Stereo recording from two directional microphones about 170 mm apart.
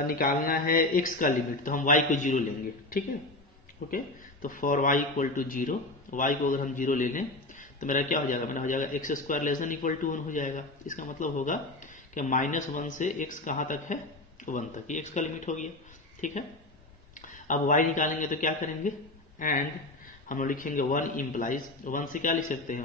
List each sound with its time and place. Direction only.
0.0 s a man's voice: 55° left (ahead or behind)